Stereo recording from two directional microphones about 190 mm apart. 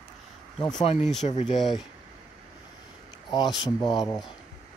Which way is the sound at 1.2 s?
35° left (ahead or behind).